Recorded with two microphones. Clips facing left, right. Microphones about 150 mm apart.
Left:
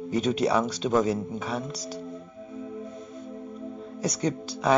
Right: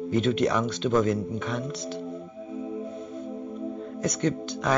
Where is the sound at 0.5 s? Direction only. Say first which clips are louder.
Even; 35° left (ahead or behind).